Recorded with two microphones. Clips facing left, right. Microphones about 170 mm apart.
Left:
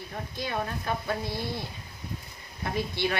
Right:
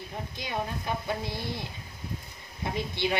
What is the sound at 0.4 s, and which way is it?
Speech, 15° right (ahead or behind).